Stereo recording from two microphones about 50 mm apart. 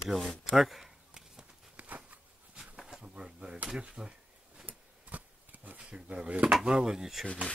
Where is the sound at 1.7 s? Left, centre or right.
Right.